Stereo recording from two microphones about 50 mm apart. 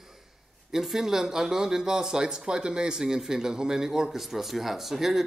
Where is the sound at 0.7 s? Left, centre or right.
Centre.